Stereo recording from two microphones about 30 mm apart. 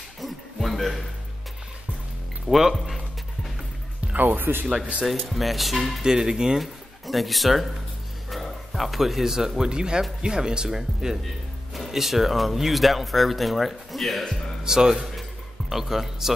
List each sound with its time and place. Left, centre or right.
0.2 s music: centre
2.4 s speech: centre
4.2 s speech: right
5.3 s speech: centre
6.0 s speech: right
6.6 s speech: centre
11.2 s speech: centre
14.6 s speech: right
15.7 s speech: centre